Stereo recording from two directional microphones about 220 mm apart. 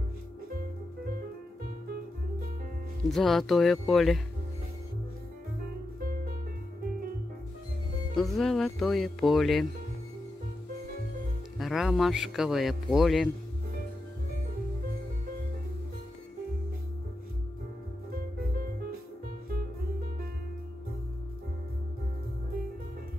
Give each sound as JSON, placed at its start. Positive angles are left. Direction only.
{"t": 3.1, "sound": "speech", "side_deg": 0}
{"t": 5.9, "sound": "music", "side_deg": -40}
{"t": 8.2, "sound": "speech", "side_deg": 0}
{"t": 11.5, "sound": "speech", "side_deg": 0}
{"t": 18.1, "sound": "music", "side_deg": -40}